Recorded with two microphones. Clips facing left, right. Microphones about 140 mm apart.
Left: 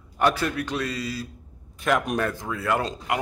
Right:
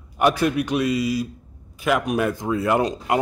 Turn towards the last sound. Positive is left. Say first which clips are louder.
# right 5 dB
turn(degrees=-20)  # may be behind; listen again after turning